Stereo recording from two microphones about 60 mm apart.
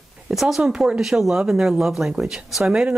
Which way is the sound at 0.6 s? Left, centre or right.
Centre.